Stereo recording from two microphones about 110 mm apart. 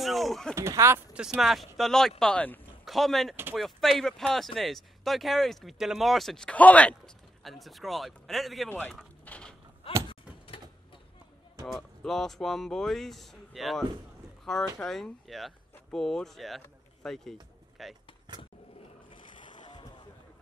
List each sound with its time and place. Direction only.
0.0 s speech: centre (ahead or behind)
0.6 s speech: 25° right (ahead or behind)
1.1 s speech: 5° right (ahead or behind); by 2.6 s 15° left (ahead or behind)
2.8 s speech: centre (ahead or behind)
7.4 s speech: centre (ahead or behind)
8.6 s speech: 15° left (ahead or behind)
9.2 s a sound: 10° left (ahead or behind)
10.0 s door: 55° left (ahead or behind)
11.6 s speech: centre (ahead or behind)
19.0 s boat: 45° left (ahead or behind)